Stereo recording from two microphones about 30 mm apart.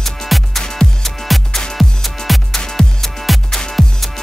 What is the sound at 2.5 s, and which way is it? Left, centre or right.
Music, centre.